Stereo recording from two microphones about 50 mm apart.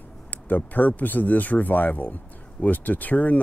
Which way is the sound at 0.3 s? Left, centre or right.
Left.